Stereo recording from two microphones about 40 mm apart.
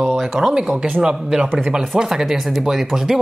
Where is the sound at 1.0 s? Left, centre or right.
Right.